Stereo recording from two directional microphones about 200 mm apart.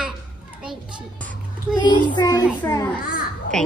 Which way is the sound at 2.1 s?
20° left (ahead or behind).